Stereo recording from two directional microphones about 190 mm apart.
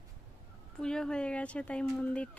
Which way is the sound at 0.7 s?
5° left (ahead or behind).